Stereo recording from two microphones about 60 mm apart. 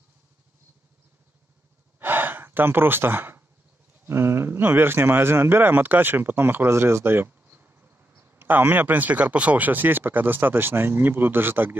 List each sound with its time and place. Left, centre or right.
2.0 s gasp: right
4.0 s speech: right